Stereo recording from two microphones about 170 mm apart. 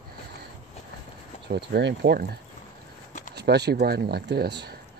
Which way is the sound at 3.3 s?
75° right (ahead or behind).